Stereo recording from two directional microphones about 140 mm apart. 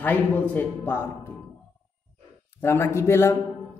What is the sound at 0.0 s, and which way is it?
A woman's voice, 15° left (ahead or behind).